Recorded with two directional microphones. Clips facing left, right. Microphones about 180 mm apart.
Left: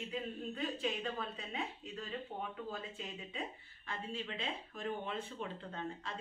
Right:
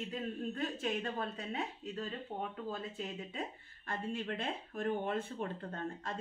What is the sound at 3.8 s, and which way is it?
Speech, 55° right (ahead or behind).